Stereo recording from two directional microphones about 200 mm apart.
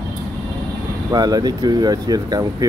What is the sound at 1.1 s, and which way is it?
Speech, 20° right (ahead or behind).